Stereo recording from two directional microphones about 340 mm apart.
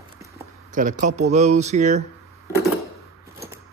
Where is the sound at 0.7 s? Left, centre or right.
Right.